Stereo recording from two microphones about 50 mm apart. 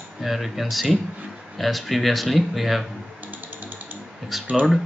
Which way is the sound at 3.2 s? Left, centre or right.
Right.